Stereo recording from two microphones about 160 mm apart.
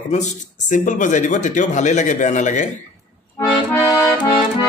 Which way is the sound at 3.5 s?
20° left (ahead or behind).